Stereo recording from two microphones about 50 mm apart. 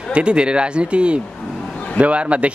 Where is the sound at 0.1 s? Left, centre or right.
Centre.